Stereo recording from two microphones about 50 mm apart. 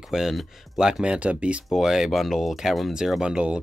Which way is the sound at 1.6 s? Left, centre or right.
Centre.